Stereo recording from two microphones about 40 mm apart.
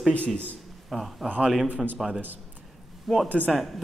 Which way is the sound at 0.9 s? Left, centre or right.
Centre.